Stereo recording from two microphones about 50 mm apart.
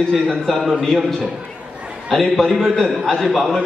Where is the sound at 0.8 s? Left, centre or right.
Centre.